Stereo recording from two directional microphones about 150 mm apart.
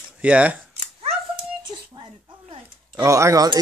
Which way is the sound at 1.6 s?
30° right (ahead or behind).